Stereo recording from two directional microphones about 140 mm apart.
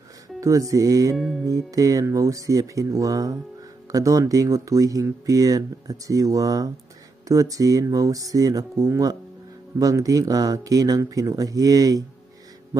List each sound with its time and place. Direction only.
0.4 s speech: 25° right (ahead or behind)
1.1 s music: centre (ahead or behind)
1.4 s speech: 25° right (ahead or behind)